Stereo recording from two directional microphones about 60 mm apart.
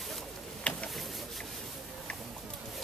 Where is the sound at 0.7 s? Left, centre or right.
Left.